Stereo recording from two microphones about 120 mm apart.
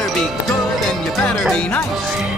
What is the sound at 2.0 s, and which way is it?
Music, 5° right (ahead or behind).